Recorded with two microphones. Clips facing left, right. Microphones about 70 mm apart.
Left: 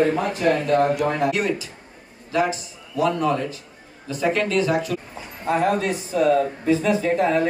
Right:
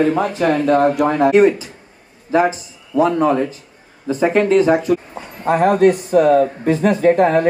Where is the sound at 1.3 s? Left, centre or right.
Right.